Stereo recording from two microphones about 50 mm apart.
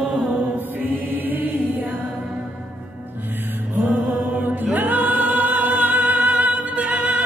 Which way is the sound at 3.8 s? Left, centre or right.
Right.